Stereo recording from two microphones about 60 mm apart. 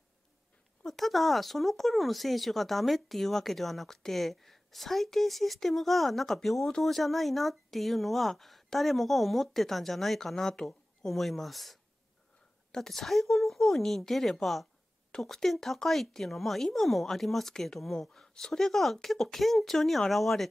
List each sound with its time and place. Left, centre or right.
0.8 s speech: centre